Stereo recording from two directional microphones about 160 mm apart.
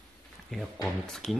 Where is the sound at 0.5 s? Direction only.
5° left (ahead or behind).